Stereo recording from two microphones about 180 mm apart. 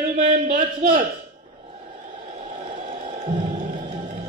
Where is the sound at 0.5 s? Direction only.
50° right (ahead or behind).